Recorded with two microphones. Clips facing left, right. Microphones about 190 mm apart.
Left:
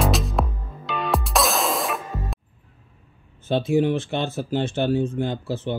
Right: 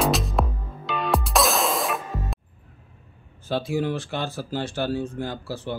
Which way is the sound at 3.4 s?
20° left (ahead or behind).